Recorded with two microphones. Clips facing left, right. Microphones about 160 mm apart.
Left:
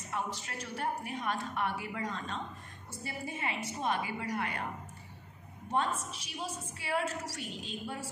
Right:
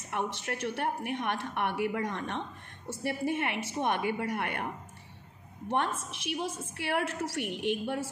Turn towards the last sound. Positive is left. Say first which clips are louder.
# right 9 dB
turn(degrees=-65)  # may be behind; listen again after turning